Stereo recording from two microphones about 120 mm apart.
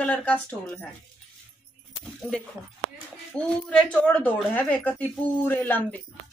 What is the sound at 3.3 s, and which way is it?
A woman's voice, 5° left (ahead or behind).